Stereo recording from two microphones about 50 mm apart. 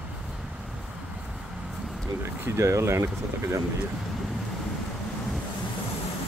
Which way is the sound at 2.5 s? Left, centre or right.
Right.